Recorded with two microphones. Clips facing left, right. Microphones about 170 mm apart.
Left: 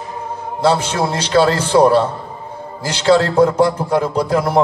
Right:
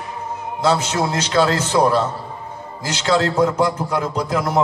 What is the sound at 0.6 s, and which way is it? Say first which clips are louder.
A man's voice: left 3 dB; 30° left (ahead or behind).